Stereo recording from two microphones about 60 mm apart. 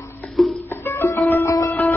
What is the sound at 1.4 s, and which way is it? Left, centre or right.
Music, left.